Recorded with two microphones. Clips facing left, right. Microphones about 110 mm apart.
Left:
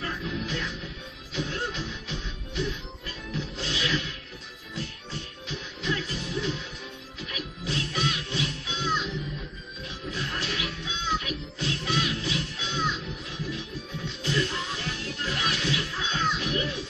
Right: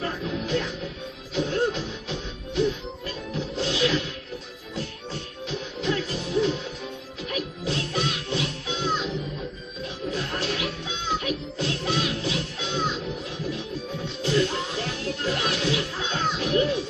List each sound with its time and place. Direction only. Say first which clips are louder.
0.0 s music: right 4 dB; 35° right (ahead or behind)
5.5 s music: right 5 dB; 40° right (ahead or behind)
10.1 s music: right 3 dB; 40° right (ahead or behind)
14.2 s music: right 5 dB; 35° right (ahead or behind)